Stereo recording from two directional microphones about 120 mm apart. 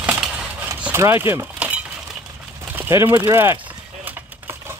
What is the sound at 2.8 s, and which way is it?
Speech, 20° right (ahead or behind).